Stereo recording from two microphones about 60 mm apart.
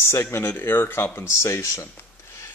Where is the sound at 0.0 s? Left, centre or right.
Left.